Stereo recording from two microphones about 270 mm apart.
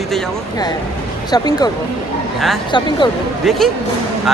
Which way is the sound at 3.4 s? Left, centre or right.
Centre.